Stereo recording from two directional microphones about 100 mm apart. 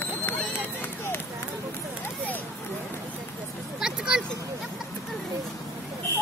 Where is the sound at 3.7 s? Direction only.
5° right (ahead or behind).